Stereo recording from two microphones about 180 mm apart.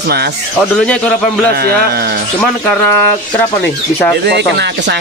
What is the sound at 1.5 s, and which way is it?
Speech, 60° right (ahead or behind).